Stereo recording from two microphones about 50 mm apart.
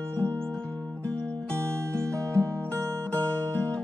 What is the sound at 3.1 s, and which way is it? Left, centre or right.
Music, left.